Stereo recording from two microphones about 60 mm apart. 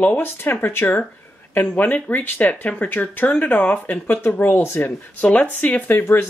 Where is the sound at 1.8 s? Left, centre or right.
Left.